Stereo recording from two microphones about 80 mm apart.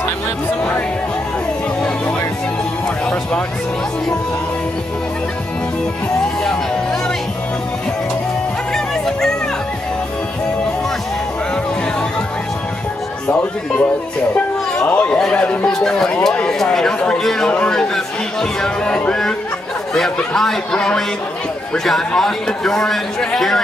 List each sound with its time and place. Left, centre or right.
6.4 s music: centre
8.7 s music: centre
13.3 s a man's voice: left; by 23.6 s centre